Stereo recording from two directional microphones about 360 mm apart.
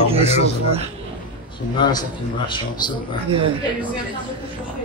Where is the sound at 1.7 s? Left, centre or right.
Centre.